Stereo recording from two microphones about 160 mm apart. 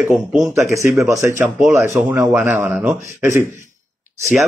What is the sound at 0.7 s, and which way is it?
Speech, 20° right (ahead or behind).